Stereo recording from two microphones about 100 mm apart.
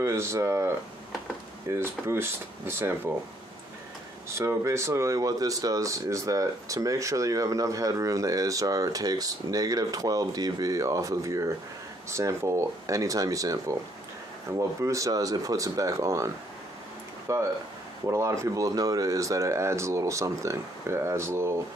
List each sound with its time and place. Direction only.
0.0 s speech: 30° right (ahead or behind)
4.3 s speech: 25° right (ahead or behind)
17.3 s speech: 30° right (ahead or behind)